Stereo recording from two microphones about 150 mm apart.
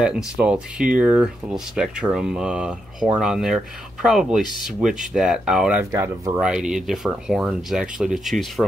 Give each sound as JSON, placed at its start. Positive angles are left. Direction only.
{"t": 0.4, "sound": "speech", "side_deg": -5}
{"t": 5.9, "sound": "speech", "side_deg": -20}
{"t": 6.4, "sound": "speech", "side_deg": -5}